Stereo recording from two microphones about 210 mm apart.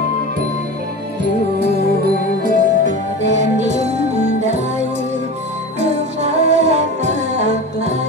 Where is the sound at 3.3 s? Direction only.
35° right (ahead or behind).